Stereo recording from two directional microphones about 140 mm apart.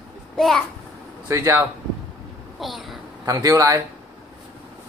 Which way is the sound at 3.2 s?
25° right (ahead or behind).